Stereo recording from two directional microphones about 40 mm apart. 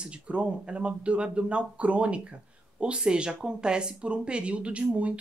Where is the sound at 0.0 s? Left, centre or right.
Right.